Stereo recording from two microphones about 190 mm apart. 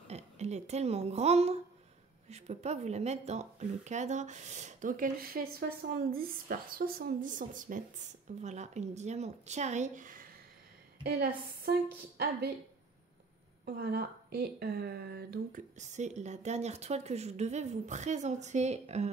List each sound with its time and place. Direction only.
0.1 s a woman's voice: 35° right (ahead or behind)
11.1 s a woman's voice: 55° right (ahead or behind)
13.7 s a woman's voice: 55° right (ahead or behind)
15.8 s speech: 40° right (ahead or behind)